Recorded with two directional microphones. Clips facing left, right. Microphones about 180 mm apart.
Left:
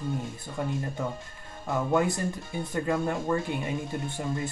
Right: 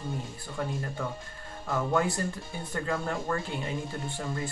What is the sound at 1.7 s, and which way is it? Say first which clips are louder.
Speech: left 2 dB; 20° left (ahead or behind).